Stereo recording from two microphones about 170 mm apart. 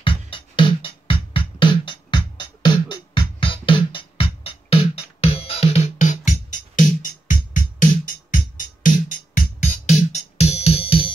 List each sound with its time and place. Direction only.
0.0 s music: 30° left (ahead or behind)